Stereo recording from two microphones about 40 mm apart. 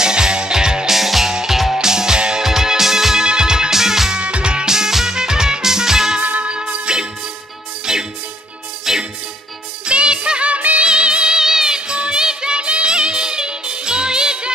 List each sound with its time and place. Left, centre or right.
0.0 s music: centre
0.9 s music: centre
4.2 s music: right
4.6 s music: centre
6.2 s music: right
6.7 s music: right
9.8 s music: right
10.9 s music: right